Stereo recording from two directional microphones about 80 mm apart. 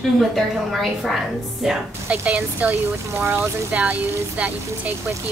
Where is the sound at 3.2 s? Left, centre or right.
Right.